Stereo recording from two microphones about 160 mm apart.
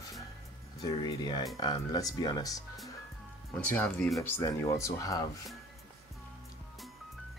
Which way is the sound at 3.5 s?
5° left (ahead or behind).